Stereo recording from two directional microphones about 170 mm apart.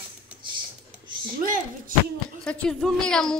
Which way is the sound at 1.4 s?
55° right (ahead or behind).